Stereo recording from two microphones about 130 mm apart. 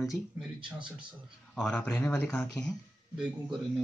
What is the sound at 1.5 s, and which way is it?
Speech, 5° left (ahead or behind).